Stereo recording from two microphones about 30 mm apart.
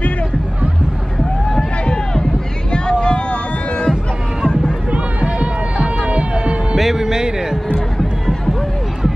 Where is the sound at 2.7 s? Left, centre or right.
Left.